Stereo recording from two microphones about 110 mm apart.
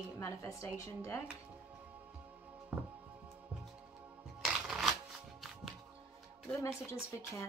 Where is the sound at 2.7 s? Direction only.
15° right (ahead or behind).